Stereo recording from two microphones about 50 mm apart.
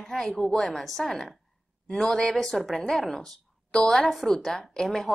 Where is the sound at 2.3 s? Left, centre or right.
Centre.